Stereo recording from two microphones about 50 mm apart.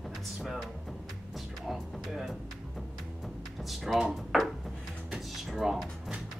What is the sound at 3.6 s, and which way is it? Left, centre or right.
Speech, centre.